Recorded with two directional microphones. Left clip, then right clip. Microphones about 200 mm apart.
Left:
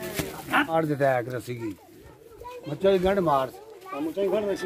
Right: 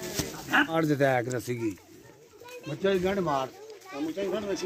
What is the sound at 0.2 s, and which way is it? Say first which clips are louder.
Bow-wow: even; 15° left (ahead or behind).